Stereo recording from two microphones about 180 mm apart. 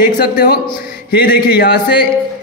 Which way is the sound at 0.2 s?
55° left (ahead or behind).